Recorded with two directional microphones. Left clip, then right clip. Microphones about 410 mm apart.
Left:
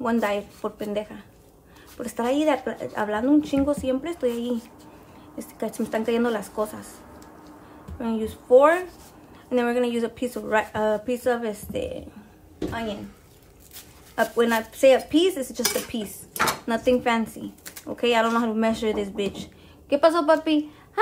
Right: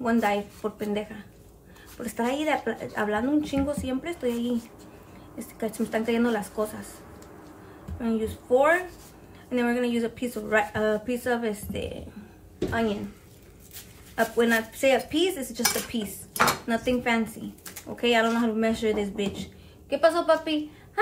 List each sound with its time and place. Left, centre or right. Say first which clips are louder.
0.0 s speech: left 1 dB; centre
5.6 s speech: left 1 dB; centre
8.0 s speech: even; centre
14.1 s a woman's voice: left 2 dB; centre